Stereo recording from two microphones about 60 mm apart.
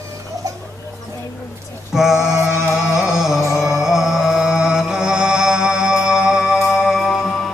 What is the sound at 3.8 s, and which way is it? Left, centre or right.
Music, centre.